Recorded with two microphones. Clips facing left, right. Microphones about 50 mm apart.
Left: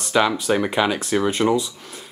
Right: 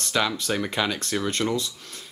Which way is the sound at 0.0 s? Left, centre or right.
Centre.